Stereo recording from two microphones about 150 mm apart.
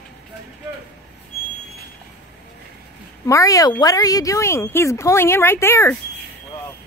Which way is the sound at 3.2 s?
20° left (ahead or behind).